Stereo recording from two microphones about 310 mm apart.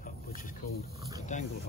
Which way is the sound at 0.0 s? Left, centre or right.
Left.